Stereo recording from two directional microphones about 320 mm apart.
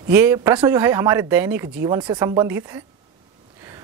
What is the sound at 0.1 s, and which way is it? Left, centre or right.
Speech, centre.